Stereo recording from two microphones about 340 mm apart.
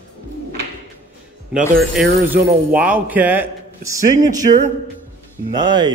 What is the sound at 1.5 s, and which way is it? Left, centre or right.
Speech, centre.